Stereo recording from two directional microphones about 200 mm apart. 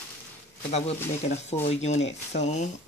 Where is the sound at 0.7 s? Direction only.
30° left (ahead or behind).